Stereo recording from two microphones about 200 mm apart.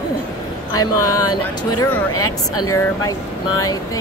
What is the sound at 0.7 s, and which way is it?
A woman's voice, 15° left (ahead or behind).